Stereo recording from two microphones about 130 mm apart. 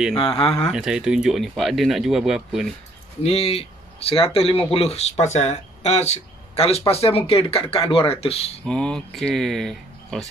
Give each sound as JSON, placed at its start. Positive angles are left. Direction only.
{"t": 0.1, "sound": "speech", "side_deg": 45}
{"t": 0.6, "sound": "speech", "side_deg": 0}
{"t": 3.3, "sound": "speech", "side_deg": 50}
{"t": 8.6, "sound": "speech", "side_deg": 5}